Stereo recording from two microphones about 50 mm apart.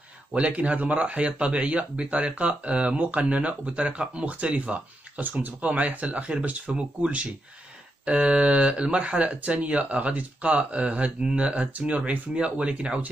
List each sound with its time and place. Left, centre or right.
0.3 s speech: right